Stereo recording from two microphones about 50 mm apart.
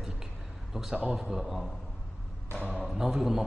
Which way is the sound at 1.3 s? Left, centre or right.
Centre.